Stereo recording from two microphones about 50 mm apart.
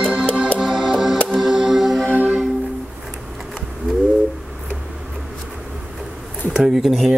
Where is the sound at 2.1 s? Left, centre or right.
Right.